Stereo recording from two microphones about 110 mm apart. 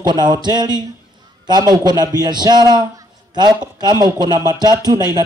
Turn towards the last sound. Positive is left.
turn(degrees=-35)  # may be behind; listen again after turning